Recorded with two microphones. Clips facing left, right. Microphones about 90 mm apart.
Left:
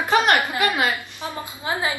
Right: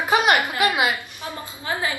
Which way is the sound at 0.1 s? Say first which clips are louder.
Even; 15° right (ahead or behind).